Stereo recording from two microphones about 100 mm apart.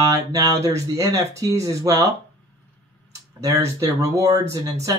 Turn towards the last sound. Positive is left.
turn(degrees=-35)  # may be behind; listen again after turning